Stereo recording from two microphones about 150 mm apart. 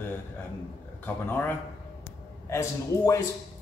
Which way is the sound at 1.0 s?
15° left (ahead or behind).